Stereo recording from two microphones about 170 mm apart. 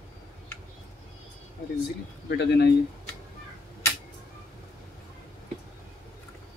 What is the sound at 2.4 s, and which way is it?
Speech, 75° left (ahead or behind).